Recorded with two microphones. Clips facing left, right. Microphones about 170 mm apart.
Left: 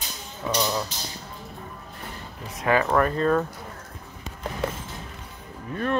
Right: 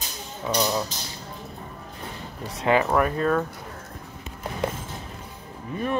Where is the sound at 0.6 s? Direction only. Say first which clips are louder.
Right 2 dB; 20° right (ahead or behind).